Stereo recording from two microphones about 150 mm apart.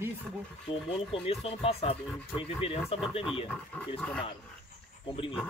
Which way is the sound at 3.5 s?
5° left (ahead or behind).